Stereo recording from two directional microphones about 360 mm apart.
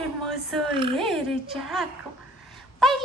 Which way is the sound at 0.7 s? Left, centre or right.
Centre.